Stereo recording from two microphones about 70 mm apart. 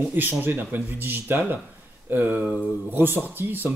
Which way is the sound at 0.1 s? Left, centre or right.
Right.